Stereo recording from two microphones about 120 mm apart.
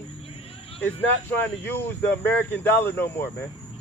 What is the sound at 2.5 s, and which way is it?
Speech, 20° left (ahead or behind).